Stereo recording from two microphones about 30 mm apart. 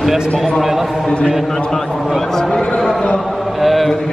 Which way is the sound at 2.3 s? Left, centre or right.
Centre.